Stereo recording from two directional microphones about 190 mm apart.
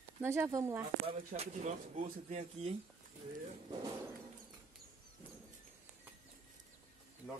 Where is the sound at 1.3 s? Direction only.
40° right (ahead or behind).